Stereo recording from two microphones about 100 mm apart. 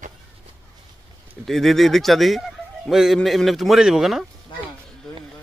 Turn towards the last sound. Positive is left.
turn(degrees=5)  # may be behind; listen again after turning